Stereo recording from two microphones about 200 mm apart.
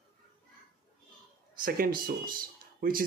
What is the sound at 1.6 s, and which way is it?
Speech, 45° right (ahead or behind).